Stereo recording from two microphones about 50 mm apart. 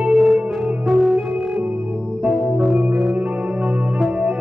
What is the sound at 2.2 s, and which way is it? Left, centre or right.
Organ, centre.